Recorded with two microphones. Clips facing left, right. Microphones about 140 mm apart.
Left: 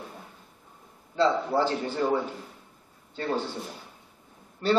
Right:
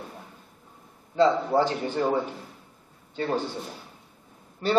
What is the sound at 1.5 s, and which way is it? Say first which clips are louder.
Speech: right 2 dB; 15° right (ahead or behind).